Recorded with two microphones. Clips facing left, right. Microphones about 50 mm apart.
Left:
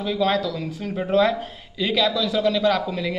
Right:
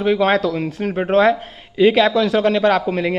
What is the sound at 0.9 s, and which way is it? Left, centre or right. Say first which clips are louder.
Speech: right 5 dB; right.